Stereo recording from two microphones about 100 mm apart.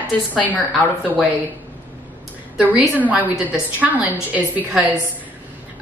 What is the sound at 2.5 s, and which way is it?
A woman's voice, 15° right (ahead or behind).